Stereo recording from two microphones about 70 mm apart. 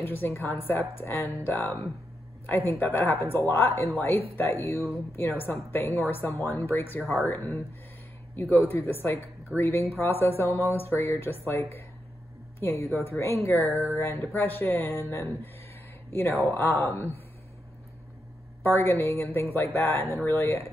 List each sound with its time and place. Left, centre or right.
0.0 s speech: left
18.6 s speech: left